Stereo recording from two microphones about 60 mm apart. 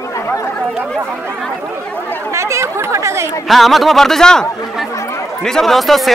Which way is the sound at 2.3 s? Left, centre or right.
Right.